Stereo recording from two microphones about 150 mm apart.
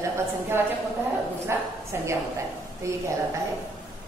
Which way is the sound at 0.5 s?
15° right (ahead or behind).